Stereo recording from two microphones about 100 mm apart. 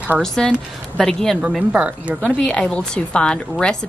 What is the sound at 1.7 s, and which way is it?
Speech, 10° right (ahead or behind).